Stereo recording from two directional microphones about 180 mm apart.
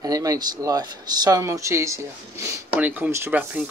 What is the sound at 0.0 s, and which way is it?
Speech, 20° right (ahead or behind).